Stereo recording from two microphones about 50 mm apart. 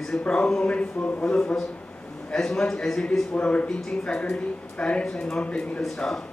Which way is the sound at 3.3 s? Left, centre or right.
Left.